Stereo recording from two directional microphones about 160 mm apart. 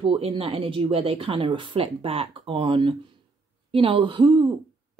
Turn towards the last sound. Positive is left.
turn(degrees=-30)  # may be behind; listen again after turning